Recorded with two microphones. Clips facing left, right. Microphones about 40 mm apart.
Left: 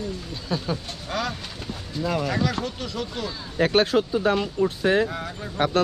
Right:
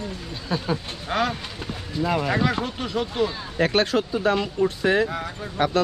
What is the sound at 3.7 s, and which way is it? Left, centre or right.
Speech, centre.